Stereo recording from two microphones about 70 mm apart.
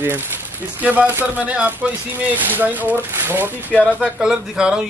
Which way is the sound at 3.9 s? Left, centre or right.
Centre.